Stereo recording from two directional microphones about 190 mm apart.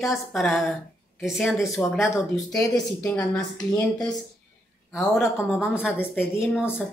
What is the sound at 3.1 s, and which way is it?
Speech, 20° left (ahead or behind).